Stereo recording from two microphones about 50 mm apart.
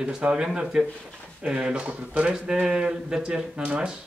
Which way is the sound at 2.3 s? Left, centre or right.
Centre.